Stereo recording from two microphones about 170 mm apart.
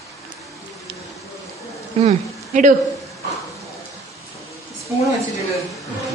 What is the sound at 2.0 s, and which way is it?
Speech, 45° right (ahead or behind).